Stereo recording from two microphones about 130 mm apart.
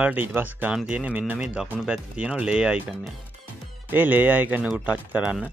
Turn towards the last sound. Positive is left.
turn(degrees=-10)  # may be behind; listen again after turning